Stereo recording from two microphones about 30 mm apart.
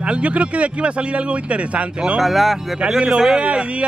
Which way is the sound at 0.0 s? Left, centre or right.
Right.